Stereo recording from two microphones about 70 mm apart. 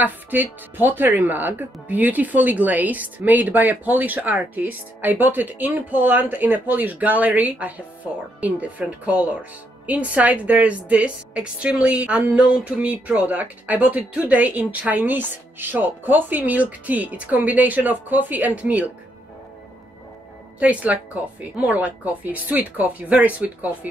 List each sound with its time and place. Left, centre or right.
0.0 s speech: right
20.5 s speech: right